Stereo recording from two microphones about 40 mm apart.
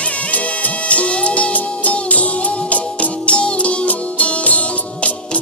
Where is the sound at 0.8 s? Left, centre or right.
Left.